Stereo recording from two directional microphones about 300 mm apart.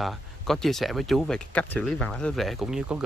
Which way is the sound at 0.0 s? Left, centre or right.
Centre.